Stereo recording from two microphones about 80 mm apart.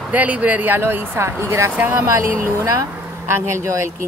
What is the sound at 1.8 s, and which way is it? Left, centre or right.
Speech, right.